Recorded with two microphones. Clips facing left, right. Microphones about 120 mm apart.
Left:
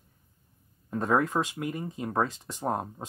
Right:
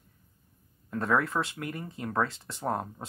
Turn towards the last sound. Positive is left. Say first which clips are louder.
# left 1 dB
turn(degrees=20)  # may be behind; listen again after turning